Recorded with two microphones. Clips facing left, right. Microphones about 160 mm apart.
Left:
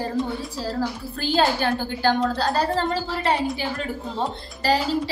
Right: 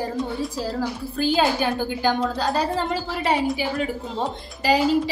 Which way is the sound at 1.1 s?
10° right (ahead or behind).